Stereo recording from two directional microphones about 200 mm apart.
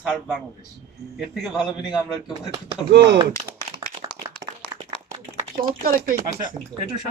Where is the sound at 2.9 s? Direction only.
60° right (ahead or behind).